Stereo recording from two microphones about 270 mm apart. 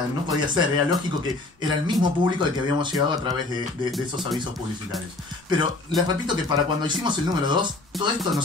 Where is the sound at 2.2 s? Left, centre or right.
Centre.